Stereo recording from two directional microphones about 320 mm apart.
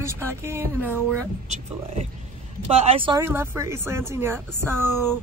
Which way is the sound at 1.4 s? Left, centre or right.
Right.